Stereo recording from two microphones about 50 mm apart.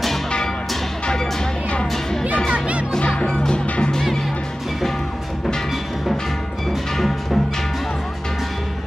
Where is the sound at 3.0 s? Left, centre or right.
Left.